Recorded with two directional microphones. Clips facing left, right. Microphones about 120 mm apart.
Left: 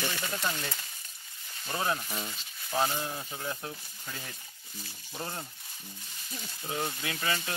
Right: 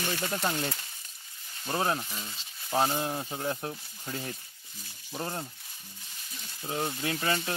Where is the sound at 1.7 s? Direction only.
30° right (ahead or behind).